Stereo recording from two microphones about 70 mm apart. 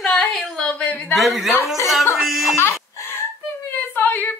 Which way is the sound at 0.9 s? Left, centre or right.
Left.